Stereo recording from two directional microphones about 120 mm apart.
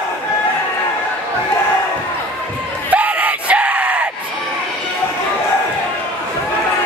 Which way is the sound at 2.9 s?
10° right (ahead or behind).